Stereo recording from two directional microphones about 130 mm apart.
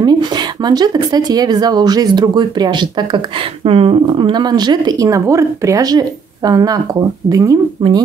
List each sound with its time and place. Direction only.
0.0 s a woman's voice: 35° right (ahead or behind)
7.8 s a woman's voice: 40° right (ahead or behind)